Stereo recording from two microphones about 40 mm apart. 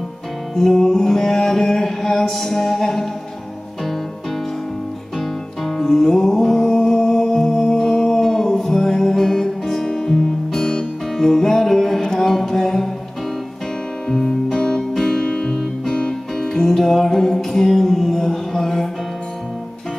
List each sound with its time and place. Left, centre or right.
0.6 s music: centre
5.7 s music: centre
14.0 s music: centre
15.2 s music: centre
15.5 s guitar: centre
16.0 s music: centre